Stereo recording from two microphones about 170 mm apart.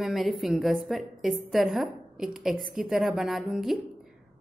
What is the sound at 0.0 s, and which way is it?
A woman's voice, centre (ahead or behind).